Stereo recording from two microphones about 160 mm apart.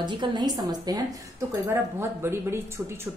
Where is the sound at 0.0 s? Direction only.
30° right (ahead or behind).